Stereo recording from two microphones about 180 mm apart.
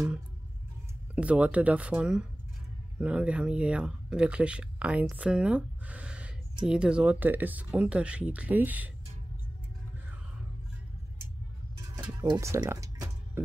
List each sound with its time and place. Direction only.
1.1 s speech: 5° right (ahead or behind)
12.2 s music: 15° right (ahead or behind)